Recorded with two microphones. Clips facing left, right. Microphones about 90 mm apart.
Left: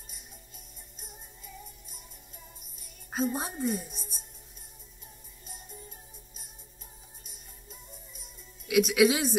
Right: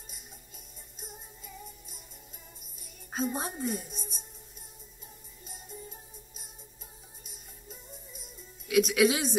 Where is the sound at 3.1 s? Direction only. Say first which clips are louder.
Left 2 dB; centre (ahead or behind).